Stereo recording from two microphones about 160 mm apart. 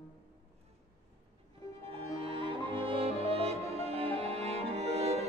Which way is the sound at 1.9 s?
35° right (ahead or behind).